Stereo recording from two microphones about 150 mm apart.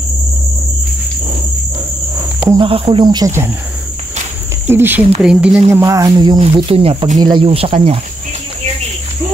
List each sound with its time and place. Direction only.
2.5 s speech: 35° right (ahead or behind)
4.6 s speech: 15° right (ahead or behind)
5.7 s a sound: 20° right (ahead or behind)
6.4 s speech: 40° right (ahead or behind)